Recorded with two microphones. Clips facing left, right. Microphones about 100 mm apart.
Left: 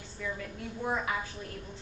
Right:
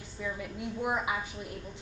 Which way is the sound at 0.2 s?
15° right (ahead or behind).